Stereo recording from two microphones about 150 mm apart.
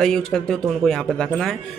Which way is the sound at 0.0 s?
5° left (ahead or behind).